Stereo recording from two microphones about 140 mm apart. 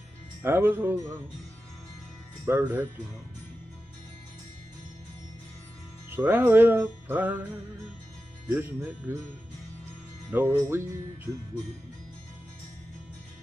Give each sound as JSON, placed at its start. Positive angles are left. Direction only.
{"t": 0.4, "sound": "music", "side_deg": -15}
{"t": 2.4, "sound": "music", "side_deg": -15}
{"t": 6.0, "sound": "music", "side_deg": -15}
{"t": 8.5, "sound": "music", "side_deg": -15}
{"t": 10.3, "sound": "music", "side_deg": -20}